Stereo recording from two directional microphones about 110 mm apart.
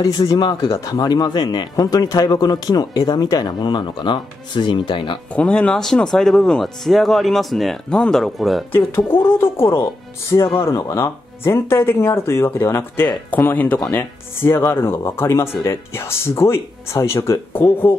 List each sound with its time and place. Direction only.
0.0 s speech: 35° left (ahead or behind)
5.3 s speech: 10° left (ahead or behind)
8.7 s speech: 20° left (ahead or behind)
10.6 s speech: 25° left (ahead or behind)